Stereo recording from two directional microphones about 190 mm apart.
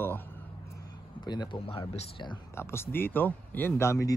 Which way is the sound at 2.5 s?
15° left (ahead or behind).